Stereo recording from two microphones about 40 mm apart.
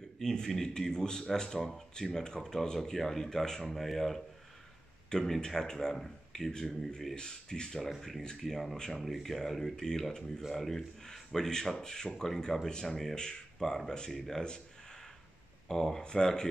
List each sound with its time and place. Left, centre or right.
0.2 s speech: centre
7.2 s speech: centre
8.9 s speech: centre
12.1 s speech: centre
13.6 s speech: centre
13.8 s speech: centre
14.1 s speech: centre
14.4 s a sound: centre
15.7 s speech: centre